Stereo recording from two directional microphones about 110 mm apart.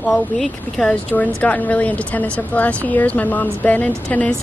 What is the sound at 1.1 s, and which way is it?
A woman's voice, 15° left (ahead or behind).